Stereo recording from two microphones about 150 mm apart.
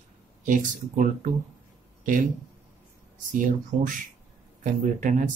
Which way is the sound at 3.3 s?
60° right (ahead or behind).